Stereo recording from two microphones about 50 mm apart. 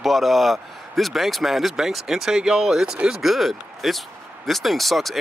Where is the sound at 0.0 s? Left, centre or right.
Centre.